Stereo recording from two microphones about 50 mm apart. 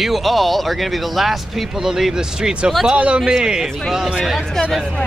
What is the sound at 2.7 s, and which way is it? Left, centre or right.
Speech, centre.